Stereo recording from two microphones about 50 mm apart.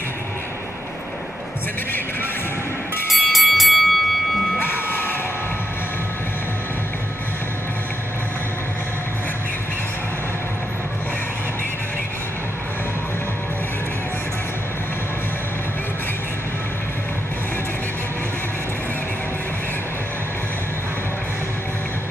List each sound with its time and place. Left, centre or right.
3.1 s music: centre
4.6 s vehicle: left